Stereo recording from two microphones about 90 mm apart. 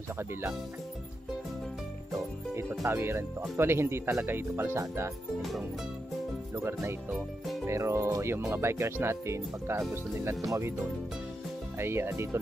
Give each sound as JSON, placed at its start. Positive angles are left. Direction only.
{"t": 0.2, "sound": "speech", "side_deg": -25}
{"t": 2.9, "sound": "speech", "side_deg": -25}
{"t": 6.5, "sound": "speech", "side_deg": -35}
{"t": 7.2, "sound": "speech", "side_deg": 0}
{"t": 7.6, "sound": "speech", "side_deg": -30}
{"t": 11.8, "sound": "speech", "side_deg": -30}